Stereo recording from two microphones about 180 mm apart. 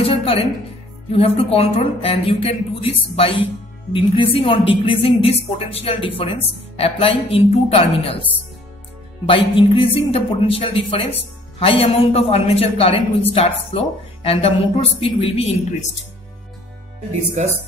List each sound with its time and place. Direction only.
0.0 s music: 30° left (ahead or behind)
1.1 s a woman's voice: 35° left (ahead or behind)